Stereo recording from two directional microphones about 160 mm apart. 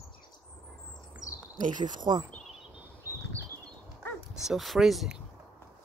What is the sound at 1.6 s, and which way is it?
Speech, 50° right (ahead or behind).